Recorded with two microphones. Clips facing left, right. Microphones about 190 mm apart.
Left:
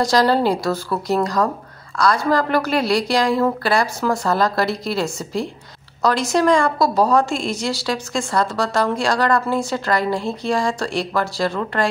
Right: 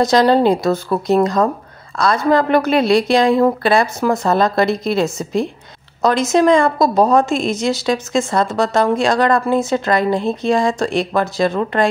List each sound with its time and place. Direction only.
0.0 s a woman's voice: 20° right (ahead or behind)